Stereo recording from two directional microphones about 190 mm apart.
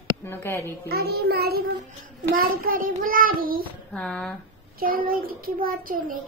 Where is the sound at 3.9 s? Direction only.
5° left (ahead or behind).